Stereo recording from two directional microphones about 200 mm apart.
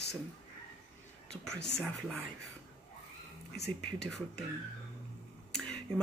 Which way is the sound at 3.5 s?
55° left (ahead or behind).